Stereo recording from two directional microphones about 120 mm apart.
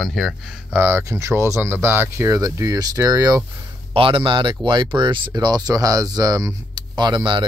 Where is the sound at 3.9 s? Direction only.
50° right (ahead or behind).